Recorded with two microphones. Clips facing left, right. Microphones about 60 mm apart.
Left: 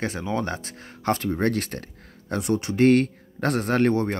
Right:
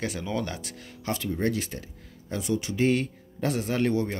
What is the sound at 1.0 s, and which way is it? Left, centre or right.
Speech, left.